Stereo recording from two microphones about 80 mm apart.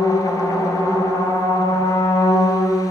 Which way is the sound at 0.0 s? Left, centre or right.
Left.